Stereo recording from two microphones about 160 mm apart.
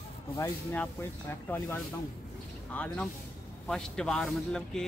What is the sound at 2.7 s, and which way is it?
Speech, 10° left (ahead or behind).